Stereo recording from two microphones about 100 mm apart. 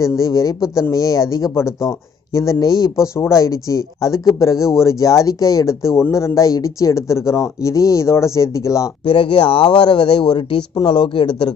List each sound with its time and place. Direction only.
0.2 s speech: 35° left (ahead or behind)
9.0 s speech: 65° left (ahead or behind)